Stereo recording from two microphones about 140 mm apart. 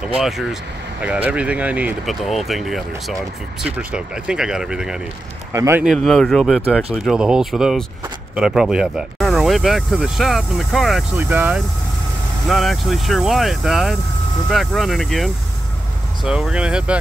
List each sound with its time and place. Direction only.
0.0 s speech: 5° right (ahead or behind)
2.0 s speech: centre (ahead or behind)
5.5 s speech: 20° right (ahead or behind)
5.9 s speech: centre (ahead or behind)
11.1 s speech: 15° right (ahead or behind)
12.4 s speech: centre (ahead or behind)